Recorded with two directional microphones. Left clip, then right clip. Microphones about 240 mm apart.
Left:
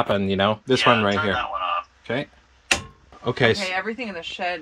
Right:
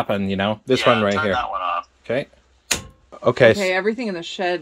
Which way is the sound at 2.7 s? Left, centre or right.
Centre.